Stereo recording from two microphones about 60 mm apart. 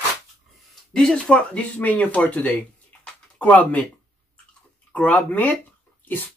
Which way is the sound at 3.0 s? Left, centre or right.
Left.